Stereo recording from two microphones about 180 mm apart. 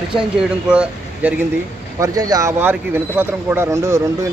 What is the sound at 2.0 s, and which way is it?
Speech, 20° right (ahead or behind).